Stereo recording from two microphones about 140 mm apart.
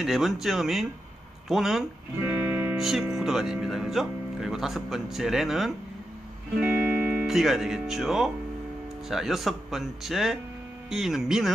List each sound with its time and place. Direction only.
0.0 s speech: centre (ahead or behind)
2.2 s music: 15° right (ahead or behind)
2.8 s speech: centre (ahead or behind)